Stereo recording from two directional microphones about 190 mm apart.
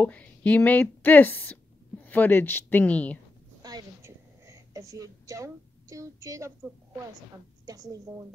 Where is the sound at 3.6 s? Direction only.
20° right (ahead or behind).